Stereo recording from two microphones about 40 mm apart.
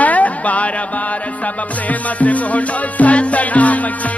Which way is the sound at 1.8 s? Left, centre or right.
Left.